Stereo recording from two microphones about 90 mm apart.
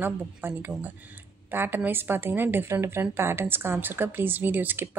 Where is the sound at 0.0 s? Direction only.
25° right (ahead or behind).